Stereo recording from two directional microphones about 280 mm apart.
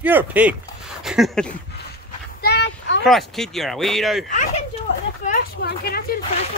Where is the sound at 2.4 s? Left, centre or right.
Left.